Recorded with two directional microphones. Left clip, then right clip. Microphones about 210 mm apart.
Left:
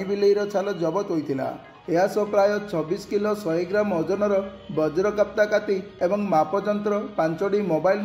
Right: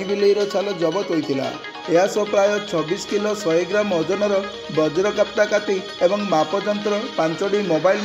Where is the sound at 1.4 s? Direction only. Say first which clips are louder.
Right 4 dB; 20° right (ahead or behind).